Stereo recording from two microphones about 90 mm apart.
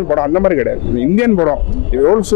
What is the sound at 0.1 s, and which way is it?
Speech, 25° left (ahead or behind).